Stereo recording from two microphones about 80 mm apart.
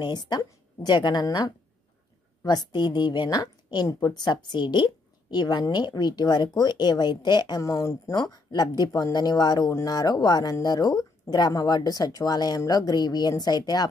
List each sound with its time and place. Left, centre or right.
0.0 s a woman's voice: left
7.6 s speech: left
8.1 s a woman's voice: left